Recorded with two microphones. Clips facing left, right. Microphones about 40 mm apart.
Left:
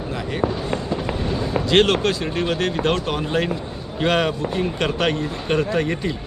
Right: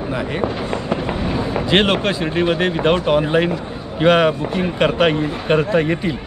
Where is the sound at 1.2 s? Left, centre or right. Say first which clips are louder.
Right 2 dB; centre.